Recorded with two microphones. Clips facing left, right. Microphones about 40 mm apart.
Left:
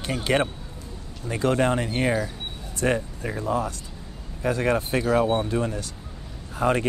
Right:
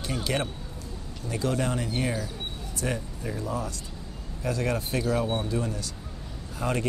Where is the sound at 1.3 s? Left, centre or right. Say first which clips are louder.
Left 6 dB; left.